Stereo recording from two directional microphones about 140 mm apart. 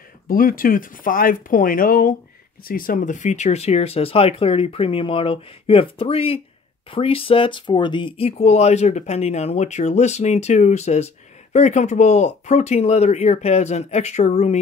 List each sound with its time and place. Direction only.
0.3 s speech: 90° left; by 14.6 s 55° left (ahead or behind)